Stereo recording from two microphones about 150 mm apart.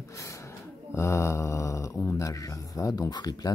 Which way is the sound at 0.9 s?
20° left (ahead or behind).